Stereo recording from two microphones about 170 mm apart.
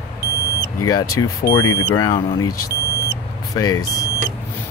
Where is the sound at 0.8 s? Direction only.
20° left (ahead or behind).